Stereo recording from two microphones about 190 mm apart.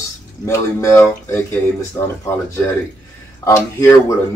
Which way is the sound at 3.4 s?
15° left (ahead or behind).